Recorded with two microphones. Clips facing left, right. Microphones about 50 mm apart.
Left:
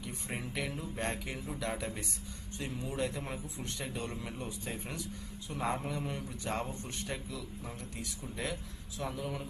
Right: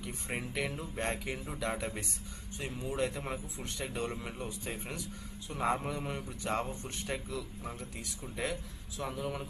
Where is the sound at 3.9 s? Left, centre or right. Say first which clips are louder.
Right 3 dB; centre.